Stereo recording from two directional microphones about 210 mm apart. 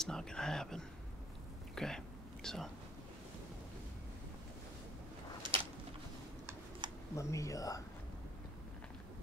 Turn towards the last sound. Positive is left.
turn(degrees=15)  # may be behind; listen again after turning